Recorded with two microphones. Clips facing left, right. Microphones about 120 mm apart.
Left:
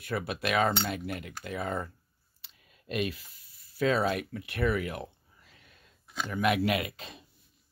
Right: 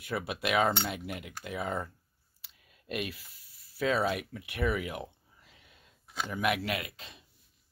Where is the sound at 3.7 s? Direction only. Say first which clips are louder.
Left 2 dB; 5° right (ahead or behind).